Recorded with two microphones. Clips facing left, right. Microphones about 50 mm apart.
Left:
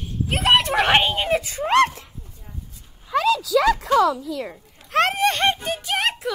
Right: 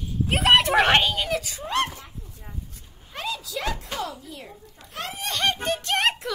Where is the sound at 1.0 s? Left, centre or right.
Left.